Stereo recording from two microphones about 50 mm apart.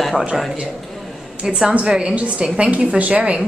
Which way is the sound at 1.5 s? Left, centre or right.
Centre.